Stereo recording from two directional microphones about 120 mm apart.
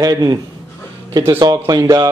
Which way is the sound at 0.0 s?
30° right (ahead or behind).